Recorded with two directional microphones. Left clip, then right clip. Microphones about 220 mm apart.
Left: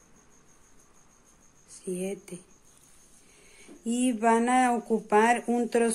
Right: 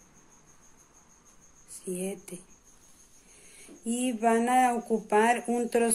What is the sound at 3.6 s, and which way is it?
Speech, 20° left (ahead or behind).